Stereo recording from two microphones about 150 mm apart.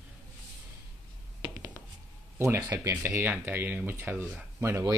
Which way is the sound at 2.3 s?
15° right (ahead or behind).